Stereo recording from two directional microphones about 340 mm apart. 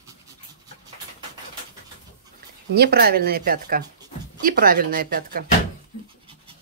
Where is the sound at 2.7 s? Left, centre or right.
Right.